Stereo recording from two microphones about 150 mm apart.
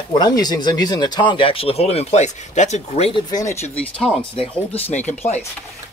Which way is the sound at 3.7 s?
5° left (ahead or behind).